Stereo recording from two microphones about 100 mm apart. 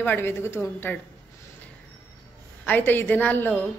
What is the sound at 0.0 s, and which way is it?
Speech, 20° left (ahead or behind).